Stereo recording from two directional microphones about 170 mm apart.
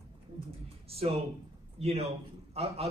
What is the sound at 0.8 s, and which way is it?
A man's voice, 35° right (ahead or behind).